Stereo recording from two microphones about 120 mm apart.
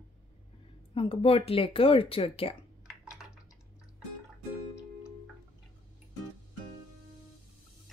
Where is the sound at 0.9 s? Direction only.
50° left (ahead or behind).